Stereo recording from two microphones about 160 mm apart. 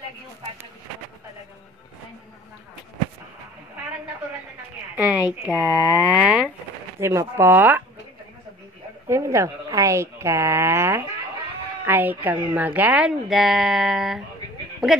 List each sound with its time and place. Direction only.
5.5 s speech: 20° left (ahead or behind)
6.2 s a sound: 5° right (ahead or behind)
7.0 s speech: 15° right (ahead or behind)
9.1 s speech: 20° right (ahead or behind); by 15.0 s centre (ahead or behind)